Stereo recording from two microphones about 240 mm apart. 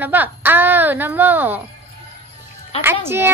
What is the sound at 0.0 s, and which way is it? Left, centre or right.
A woman's voice, centre.